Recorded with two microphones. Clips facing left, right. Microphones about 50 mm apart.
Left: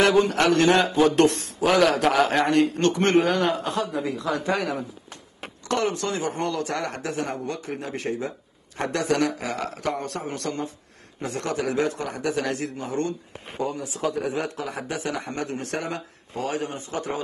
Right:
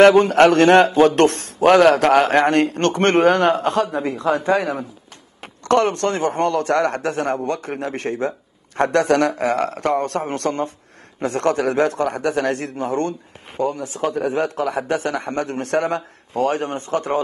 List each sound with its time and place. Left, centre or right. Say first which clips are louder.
0.1 s a man's voice: right 7 dB; right
4.6 s a man's voice: right 5 dB; right